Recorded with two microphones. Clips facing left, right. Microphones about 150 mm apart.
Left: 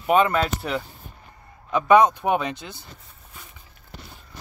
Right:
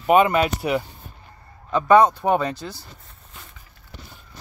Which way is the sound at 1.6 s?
10° left (ahead or behind).